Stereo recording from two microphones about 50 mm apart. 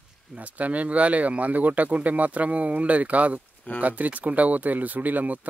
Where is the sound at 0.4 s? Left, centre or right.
Right.